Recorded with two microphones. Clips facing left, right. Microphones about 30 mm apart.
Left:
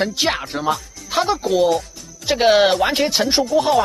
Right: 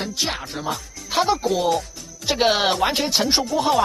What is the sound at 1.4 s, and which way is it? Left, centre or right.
Speech, centre.